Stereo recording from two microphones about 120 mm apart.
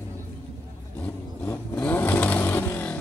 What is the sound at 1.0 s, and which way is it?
Vehicle, 15° left (ahead or behind).